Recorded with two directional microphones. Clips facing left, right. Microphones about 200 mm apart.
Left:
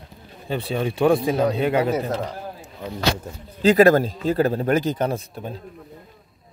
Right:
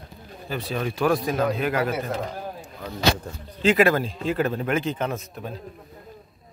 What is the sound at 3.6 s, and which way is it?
Speech, 40° left (ahead or behind).